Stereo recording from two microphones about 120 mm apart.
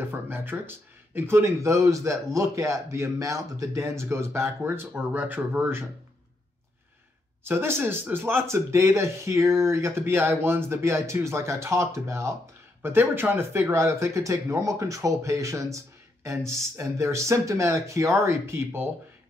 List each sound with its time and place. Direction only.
0.1 s speech: 20° right (ahead or behind)
7.4 s speech: 20° right (ahead or behind)